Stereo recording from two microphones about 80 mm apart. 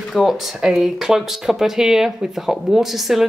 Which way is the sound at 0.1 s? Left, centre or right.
Centre.